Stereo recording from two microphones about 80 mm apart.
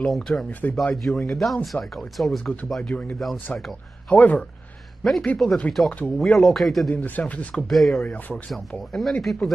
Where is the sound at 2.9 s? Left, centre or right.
Centre.